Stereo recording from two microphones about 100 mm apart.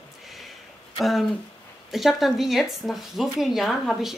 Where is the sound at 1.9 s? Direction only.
Centre (ahead or behind).